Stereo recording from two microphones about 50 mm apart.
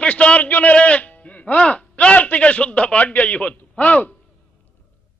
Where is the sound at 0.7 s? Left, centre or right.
Left.